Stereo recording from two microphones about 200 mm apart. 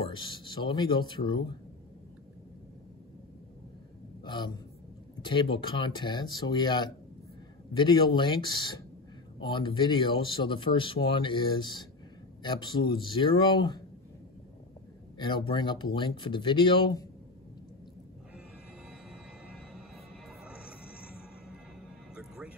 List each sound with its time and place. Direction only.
0.1 s speech: 25° left (ahead or behind)
4.2 s a man's voice: 20° left (ahead or behind)
15.1 s speech: 25° left (ahead or behind)
20.2 s music: 5° right (ahead or behind)